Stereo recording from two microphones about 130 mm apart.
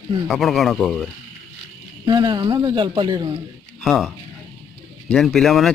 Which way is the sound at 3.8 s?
Centre (ahead or behind).